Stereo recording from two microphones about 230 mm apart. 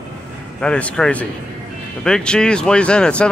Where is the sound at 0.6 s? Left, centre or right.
Centre.